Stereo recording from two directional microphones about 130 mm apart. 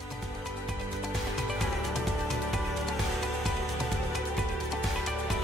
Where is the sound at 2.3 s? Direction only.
Centre (ahead or behind).